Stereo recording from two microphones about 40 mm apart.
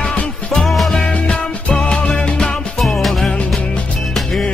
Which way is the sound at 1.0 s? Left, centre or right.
Left.